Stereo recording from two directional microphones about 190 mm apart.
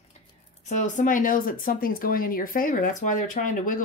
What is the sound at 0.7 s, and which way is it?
Speech, 40° left (ahead or behind).